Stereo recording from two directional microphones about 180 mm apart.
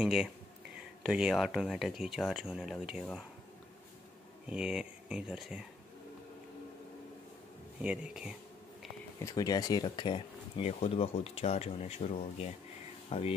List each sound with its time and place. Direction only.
0.0 s speech: 5° right (ahead or behind)
4.5 s speech: 5° right (ahead or behind)
7.8 s speech: 5° right (ahead or behind)
9.2 s speech: 20° left (ahead or behind)